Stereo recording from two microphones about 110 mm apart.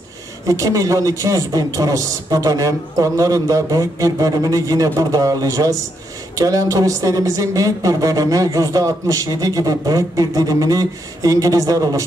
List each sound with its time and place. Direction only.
0.5 s a woman's voice: 30° right (ahead or behind)